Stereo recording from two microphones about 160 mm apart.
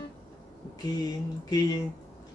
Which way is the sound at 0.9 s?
25° left (ahead or behind).